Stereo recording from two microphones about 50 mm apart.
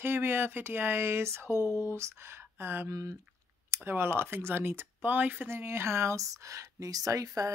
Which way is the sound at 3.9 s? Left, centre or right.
Right.